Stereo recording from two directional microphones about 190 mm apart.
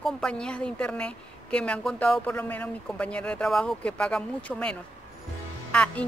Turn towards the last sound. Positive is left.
turn(degrees=5)  # may be behind; listen again after turning